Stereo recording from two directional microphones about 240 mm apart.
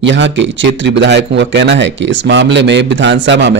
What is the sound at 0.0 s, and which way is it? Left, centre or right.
Speech, right.